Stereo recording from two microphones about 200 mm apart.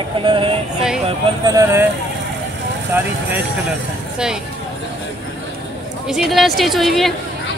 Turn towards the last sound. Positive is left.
turn(degrees=0)  # may be behind; listen again after turning